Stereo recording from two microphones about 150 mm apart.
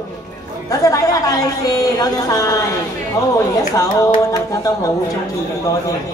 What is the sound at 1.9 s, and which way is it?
Speech, 25° left (ahead or behind).